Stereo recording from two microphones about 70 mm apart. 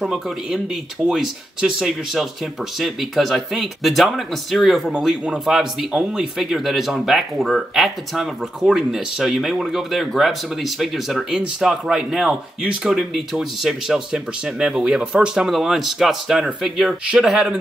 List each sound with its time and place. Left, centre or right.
0.0 s speech: centre
4.9 s speech: centre
5.4 s speech: centre
17.0 s speech: centre